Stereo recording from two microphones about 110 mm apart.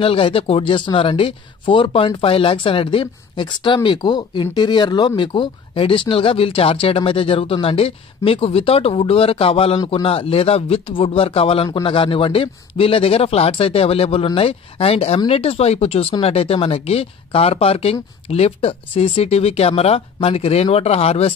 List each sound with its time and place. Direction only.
0.0 s speech: 55° left (ahead or behind)